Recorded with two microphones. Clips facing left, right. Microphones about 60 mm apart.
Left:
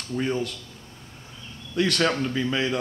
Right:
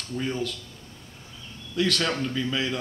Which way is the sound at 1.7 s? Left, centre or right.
Centre.